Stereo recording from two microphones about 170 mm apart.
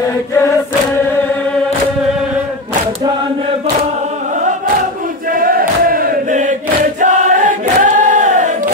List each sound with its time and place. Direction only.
5.3 s chant: 55° right (ahead or behind)